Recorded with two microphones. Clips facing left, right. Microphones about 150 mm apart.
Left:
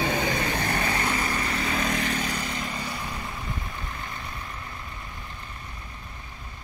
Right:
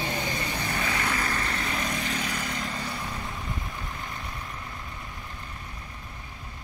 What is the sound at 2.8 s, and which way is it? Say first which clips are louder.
Vehicle: even; centre (ahead or behind).